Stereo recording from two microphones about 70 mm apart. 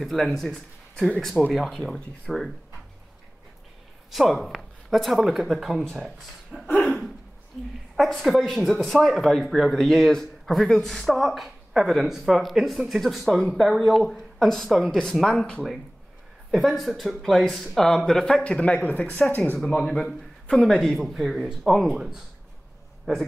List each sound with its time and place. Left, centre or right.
0.0 s speech: centre
4.1 s speech: centre
6.8 s hiccup: centre
7.9 s speech: centre
18.4 s speech: centre
19.6 s a man's voice: centre